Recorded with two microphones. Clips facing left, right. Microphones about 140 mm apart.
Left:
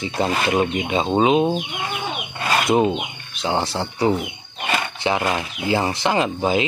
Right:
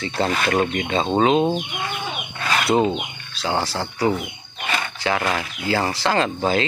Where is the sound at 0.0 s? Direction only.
15° left (ahead or behind).